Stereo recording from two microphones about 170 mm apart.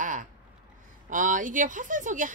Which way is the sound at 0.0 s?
50° right (ahead or behind).